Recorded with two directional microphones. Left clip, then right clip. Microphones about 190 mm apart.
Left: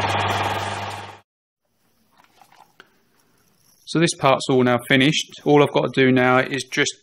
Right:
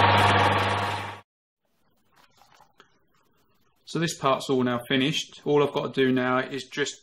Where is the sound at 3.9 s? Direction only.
55° left (ahead or behind).